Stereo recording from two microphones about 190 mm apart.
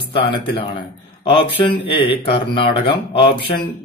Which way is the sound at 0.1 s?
30° left (ahead or behind).